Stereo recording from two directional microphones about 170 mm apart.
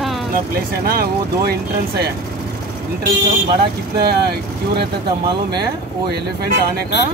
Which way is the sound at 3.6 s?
70° right (ahead or behind).